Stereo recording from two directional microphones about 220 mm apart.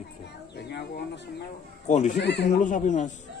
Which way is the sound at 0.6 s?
50° left (ahead or behind).